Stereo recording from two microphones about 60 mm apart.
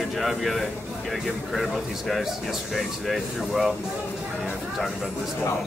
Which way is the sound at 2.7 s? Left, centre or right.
Centre.